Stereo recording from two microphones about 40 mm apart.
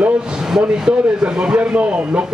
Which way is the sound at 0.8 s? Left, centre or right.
Right.